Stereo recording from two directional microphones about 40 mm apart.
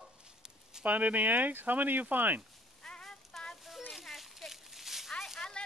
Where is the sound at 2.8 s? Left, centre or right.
Centre.